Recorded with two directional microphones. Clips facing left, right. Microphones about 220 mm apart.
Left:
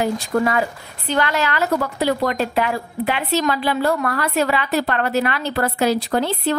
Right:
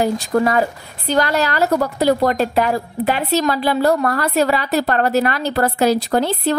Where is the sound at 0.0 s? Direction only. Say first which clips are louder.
Right 3 dB; 40° right (ahead or behind).